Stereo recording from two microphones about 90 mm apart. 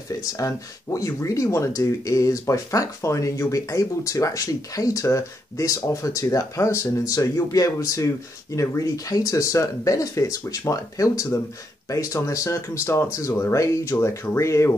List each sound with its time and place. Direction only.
0.1 s speech: 40° left (ahead or behind)